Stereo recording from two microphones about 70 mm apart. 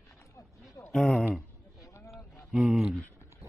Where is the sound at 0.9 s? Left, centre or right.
Centre.